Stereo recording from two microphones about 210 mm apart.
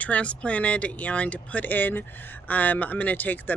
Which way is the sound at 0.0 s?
5° left (ahead or behind).